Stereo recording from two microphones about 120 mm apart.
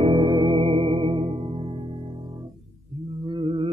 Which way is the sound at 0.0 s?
50° right (ahead or behind).